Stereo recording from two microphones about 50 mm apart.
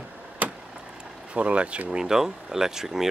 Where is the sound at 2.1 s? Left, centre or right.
Centre.